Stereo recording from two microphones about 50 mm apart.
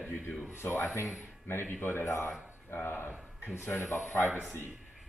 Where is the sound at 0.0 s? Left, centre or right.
Left.